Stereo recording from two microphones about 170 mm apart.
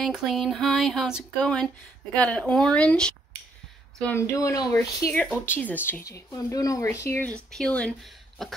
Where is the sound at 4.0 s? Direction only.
15° left (ahead or behind).